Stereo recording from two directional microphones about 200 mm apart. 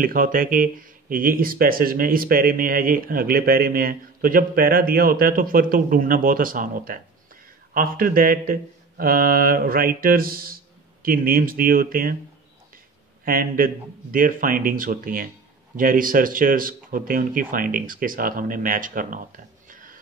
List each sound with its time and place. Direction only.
0.0 s speech: 45° right (ahead or behind)
13.2 s speech: 45° right (ahead or behind)
19.7 s music: 45° right (ahead or behind)